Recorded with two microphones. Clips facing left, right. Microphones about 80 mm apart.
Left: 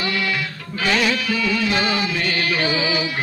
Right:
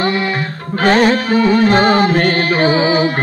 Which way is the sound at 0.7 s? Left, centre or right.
Right.